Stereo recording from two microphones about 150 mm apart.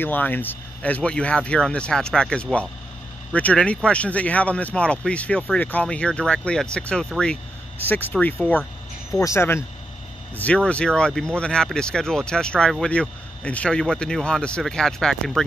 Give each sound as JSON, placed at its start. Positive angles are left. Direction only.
{"t": 0.0, "sound": "speech", "side_deg": 10}
{"t": 9.1, "sound": "speech", "side_deg": 20}